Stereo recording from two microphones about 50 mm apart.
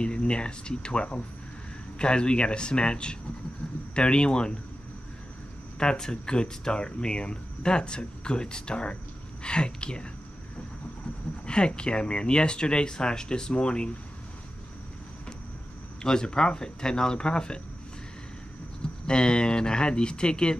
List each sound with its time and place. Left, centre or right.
0.0 s speech: centre
5.8 s speech: centre
11.4 s speech: centre
16.0 s speech: centre
18.8 s speech: centre